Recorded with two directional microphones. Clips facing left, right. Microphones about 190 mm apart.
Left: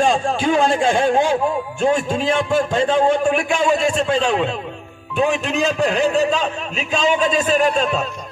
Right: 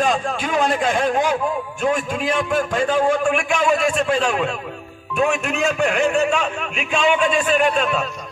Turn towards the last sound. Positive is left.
turn(degrees=40)  # may be behind; listen again after turning